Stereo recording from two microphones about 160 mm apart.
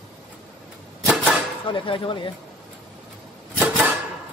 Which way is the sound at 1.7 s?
30° left (ahead or behind).